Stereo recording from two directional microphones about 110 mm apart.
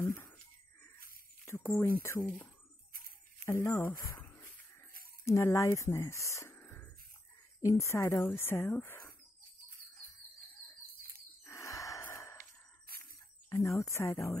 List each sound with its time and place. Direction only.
0.0 s a sound: 25° left (ahead or behind)
1.4 s a sound: 25° left (ahead or behind)
1.7 s speech: 25° left (ahead or behind)
3.4 s speech: 25° left (ahead or behind)
11.4 s gasp: 25° left (ahead or behind)
13.5 s speech: 25° left (ahead or behind)